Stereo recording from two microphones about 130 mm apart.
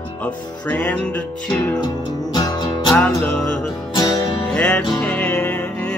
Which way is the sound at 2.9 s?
10° left (ahead or behind).